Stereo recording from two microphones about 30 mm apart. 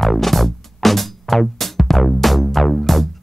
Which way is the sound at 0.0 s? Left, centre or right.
Centre.